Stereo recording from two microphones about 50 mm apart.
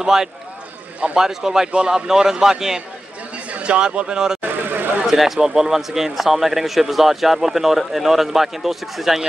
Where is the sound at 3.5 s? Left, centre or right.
Right.